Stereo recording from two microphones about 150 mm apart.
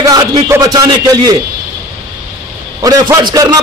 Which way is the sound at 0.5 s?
25° right (ahead or behind).